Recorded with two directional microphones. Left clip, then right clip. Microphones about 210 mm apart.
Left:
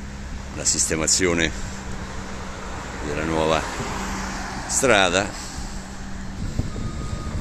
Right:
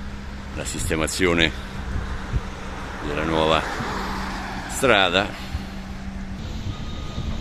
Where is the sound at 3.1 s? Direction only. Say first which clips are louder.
Right 1 dB; centre (ahead or behind).